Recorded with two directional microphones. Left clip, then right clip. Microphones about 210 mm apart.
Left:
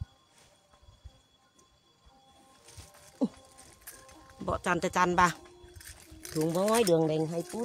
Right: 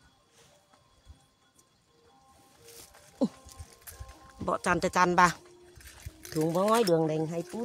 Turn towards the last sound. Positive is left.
turn(degrees=-15)  # may be behind; listen again after turning